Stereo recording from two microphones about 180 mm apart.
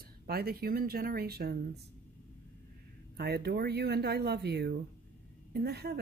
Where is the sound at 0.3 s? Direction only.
60° right (ahead or behind).